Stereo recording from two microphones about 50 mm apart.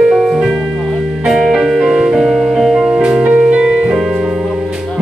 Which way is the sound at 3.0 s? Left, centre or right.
Centre.